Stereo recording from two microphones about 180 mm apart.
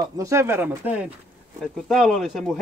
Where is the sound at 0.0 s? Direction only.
15° right (ahead or behind).